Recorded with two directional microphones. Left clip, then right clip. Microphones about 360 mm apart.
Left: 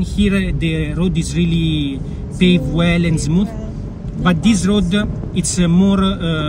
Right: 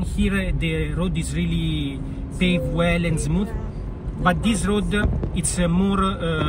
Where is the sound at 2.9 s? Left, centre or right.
Centre.